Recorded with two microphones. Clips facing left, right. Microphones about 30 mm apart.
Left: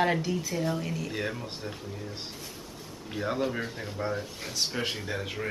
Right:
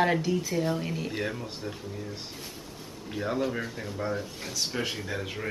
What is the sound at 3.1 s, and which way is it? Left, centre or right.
Speech, centre.